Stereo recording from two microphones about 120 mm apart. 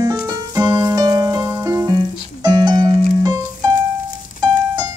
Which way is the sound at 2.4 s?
35° right (ahead or behind).